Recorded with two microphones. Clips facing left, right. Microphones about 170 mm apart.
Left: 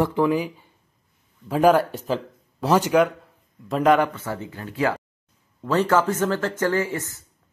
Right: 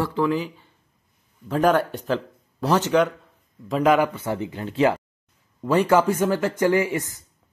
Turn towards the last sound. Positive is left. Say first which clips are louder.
# right 3 dB
turn(degrees=-15)  # may be behind; listen again after turning